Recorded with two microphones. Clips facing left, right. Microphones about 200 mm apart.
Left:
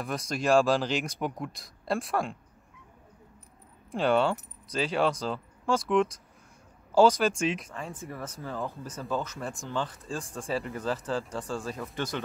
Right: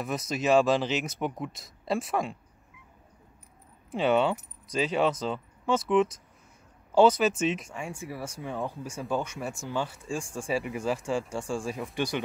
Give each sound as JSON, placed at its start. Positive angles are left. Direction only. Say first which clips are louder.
{"t": 0.0, "sound": "speech", "louder": "right 1 dB", "side_deg": -5}
{"t": 3.9, "sound": "speech", "louder": "right 1 dB", "side_deg": -5}
{"t": 7.1, "sound": "speech", "louder": "right 1 dB", "side_deg": -5}
{"t": 11.2, "sound": "speech", "louder": "right 2 dB", "side_deg": -25}
{"t": 11.9, "sound": "speech", "louder": "right 4 dB", "side_deg": -15}